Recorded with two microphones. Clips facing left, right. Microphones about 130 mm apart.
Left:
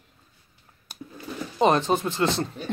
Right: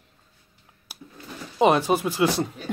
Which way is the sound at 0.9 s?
10° right (ahead or behind).